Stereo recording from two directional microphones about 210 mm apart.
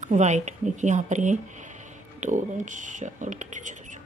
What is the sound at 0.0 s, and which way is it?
Speech, 35° right (ahead or behind).